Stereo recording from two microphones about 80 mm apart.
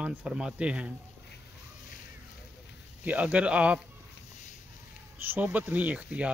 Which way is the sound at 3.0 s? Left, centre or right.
Centre.